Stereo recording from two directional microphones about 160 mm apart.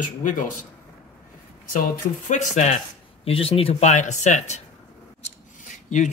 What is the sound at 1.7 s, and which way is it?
Speech, 55° left (ahead or behind).